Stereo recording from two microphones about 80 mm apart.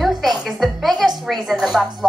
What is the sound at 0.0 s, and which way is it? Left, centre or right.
A woman's voice, centre.